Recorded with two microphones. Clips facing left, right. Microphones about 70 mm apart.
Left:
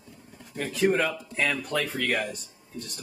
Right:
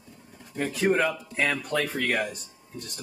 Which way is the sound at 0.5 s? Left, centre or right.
Right.